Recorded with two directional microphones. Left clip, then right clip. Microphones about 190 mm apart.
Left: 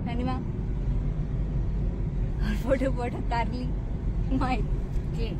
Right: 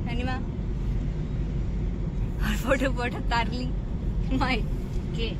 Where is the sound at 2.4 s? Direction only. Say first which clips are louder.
Right 1 dB; 5° right (ahead or behind).